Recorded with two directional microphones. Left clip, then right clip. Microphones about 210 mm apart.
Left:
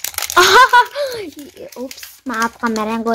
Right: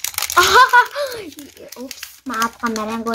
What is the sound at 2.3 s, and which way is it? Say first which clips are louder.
Speech: left 2 dB; 30° left (ahead or behind).